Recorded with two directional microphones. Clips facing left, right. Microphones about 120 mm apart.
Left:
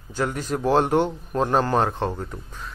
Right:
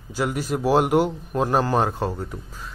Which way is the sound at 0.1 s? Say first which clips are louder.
Right 1 dB; 10° right (ahead or behind).